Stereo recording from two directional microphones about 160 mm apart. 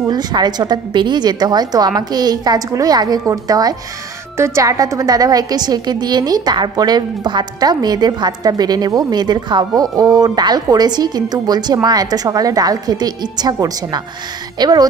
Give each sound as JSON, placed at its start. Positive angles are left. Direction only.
{"t": 0.1, "sound": "a woman's voice", "side_deg": -25}